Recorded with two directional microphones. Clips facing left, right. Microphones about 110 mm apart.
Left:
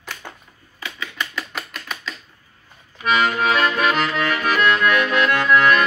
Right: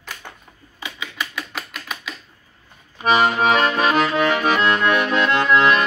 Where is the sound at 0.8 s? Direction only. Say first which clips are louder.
Even; 10° right (ahead or behind).